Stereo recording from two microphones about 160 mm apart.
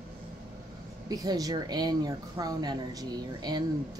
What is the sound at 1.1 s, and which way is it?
Speech, 25° right (ahead or behind).